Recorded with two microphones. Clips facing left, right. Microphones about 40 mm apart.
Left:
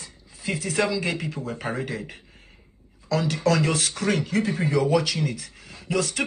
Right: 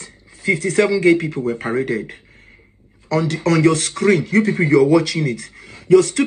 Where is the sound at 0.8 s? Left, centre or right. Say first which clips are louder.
Right 12 dB; right.